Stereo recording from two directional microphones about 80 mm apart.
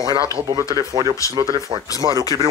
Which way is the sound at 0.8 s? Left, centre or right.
Right.